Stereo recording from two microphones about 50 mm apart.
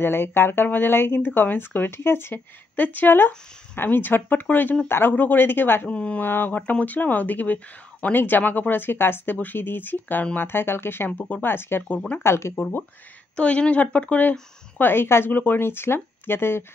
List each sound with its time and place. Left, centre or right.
0.0 s speech: left
2.7 s speech: left
5.9 s speech: left
6.2 s speech: left
6.6 s speech: left
12.2 s speech: left
13.4 s speech: left
14.8 s speech: left
15.3 s speech: left